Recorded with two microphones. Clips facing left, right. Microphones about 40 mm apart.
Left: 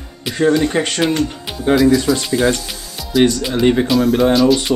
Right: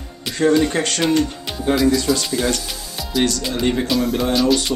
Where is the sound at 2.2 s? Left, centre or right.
Left.